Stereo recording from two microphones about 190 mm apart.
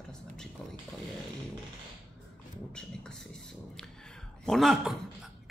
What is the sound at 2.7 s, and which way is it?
Speech, 5° left (ahead or behind).